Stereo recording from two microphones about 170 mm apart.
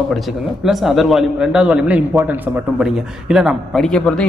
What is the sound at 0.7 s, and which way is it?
A man's voice, centre (ahead or behind).